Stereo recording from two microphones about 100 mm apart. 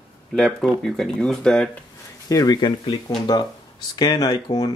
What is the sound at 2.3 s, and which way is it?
Speech, 40° left (ahead or behind).